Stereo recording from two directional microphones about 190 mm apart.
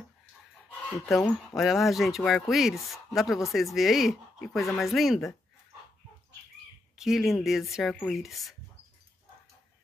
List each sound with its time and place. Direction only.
0.7 s speech: 5° left (ahead or behind)
7.0 s speech: centre (ahead or behind)